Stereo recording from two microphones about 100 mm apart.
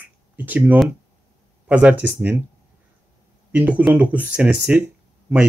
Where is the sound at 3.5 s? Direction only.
15° right (ahead or behind).